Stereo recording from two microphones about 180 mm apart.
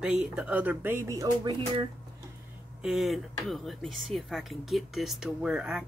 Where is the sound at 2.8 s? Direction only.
Centre (ahead or behind).